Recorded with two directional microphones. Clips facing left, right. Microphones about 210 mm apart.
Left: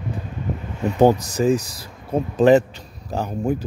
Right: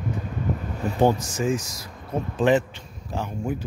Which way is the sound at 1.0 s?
40° left (ahead or behind).